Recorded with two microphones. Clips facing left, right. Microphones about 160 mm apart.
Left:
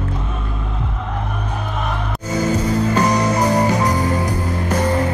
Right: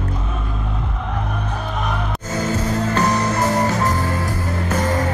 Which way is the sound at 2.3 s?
10° left (ahead or behind).